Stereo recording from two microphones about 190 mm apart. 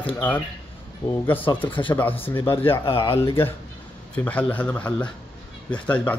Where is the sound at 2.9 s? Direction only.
30° left (ahead or behind).